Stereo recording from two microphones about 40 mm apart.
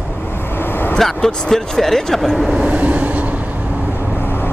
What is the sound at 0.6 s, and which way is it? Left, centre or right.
Vehicle, left.